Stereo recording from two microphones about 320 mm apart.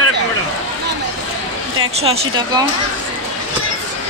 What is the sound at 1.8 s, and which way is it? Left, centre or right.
Speech, centre.